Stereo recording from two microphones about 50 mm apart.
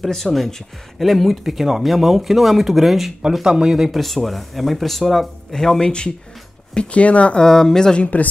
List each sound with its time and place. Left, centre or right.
0.0 s speech: centre
3.4 s speech: centre
4.0 s speech: centre; by 7.4 s left
7.4 s speech: centre
8.0 s speech: left